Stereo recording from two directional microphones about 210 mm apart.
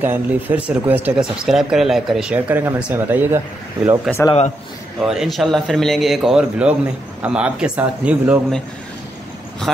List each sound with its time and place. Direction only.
0.0 s speech: 10° right (ahead or behind)
4.1 s speech: centre (ahead or behind)